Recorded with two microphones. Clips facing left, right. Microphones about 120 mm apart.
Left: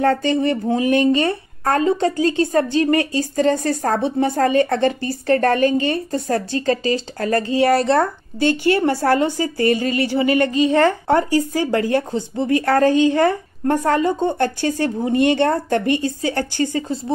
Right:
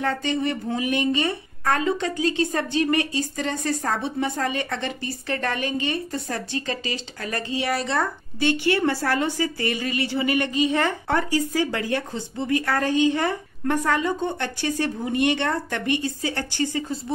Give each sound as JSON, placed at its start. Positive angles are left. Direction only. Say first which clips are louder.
{"t": 0.0, "sound": "speech", "louder": "left 7 dB", "side_deg": 40}